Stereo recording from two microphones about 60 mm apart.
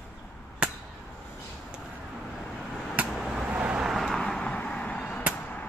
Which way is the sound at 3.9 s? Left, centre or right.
Centre.